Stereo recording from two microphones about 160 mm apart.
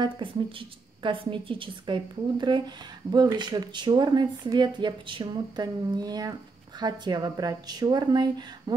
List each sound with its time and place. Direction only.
0.0 s a woman's voice: 30° right (ahead or behind)